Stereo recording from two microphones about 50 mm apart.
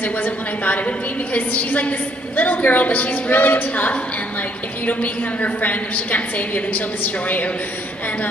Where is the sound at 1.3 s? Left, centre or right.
Left.